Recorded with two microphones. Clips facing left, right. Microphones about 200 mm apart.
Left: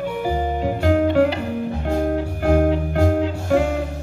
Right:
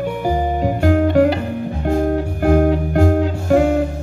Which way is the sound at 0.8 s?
50° right (ahead or behind).